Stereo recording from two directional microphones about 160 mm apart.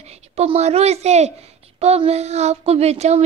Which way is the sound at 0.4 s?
40° right (ahead or behind).